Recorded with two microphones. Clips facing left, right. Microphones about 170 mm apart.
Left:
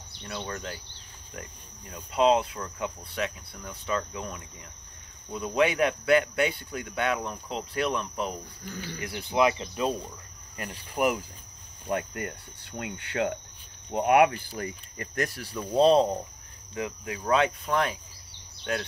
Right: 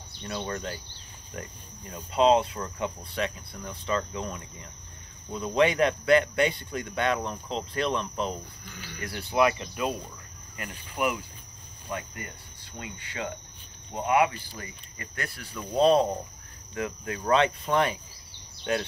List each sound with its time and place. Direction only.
0.5 s speech: centre (ahead or behind)
8.6 s speech: 40° left (ahead or behind)
9.0 s speech: 15° left (ahead or behind)
10.6 s speech: 40° left (ahead or behind)
11.9 s speech: 60° left (ahead or behind)
15.0 s speech: 40° left (ahead or behind)
16.7 s speech: 15° left (ahead or behind)
17.2 s speech: centre (ahead or behind)